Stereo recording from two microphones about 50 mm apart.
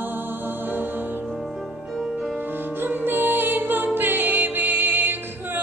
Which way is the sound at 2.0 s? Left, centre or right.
Centre.